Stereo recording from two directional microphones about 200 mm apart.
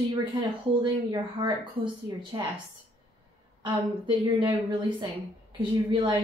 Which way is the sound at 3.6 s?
20° right (ahead or behind).